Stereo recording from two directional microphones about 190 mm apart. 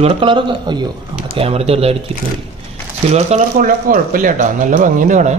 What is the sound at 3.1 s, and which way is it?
Speech, 40° right (ahead or behind).